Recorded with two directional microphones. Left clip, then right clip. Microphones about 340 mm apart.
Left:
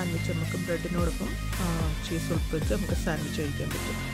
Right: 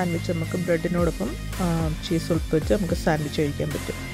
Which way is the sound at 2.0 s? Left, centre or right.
Centre.